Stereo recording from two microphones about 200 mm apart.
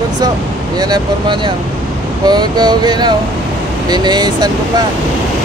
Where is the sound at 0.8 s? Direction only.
20° right (ahead or behind).